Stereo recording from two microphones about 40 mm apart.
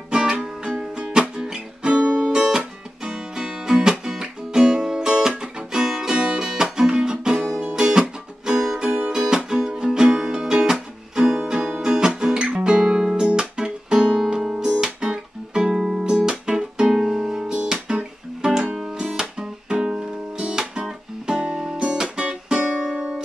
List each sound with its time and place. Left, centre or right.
0.1 s music: centre
0.9 s music: right
7.3 s music: centre
12.8 s guitar: centre
16.2 s music: centre
17.8 s guitar: centre
19.7 s music: centre
22.7 s music: centre